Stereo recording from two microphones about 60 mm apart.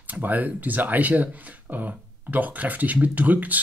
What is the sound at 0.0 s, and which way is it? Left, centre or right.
Speech, right.